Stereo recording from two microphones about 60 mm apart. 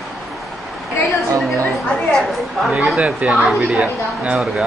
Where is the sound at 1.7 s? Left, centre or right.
Centre.